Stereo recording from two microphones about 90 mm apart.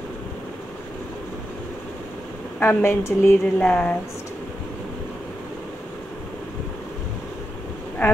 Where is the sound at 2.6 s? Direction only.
25° left (ahead or behind).